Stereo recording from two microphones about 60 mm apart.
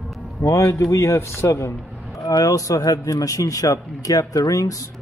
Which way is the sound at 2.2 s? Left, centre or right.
Left.